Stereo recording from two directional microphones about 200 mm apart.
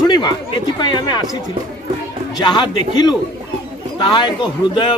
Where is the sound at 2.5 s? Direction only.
20° left (ahead or behind).